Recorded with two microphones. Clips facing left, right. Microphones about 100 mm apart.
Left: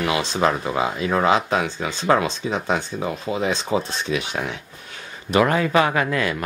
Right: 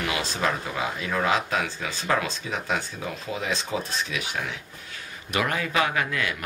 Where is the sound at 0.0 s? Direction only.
25° left (ahead or behind).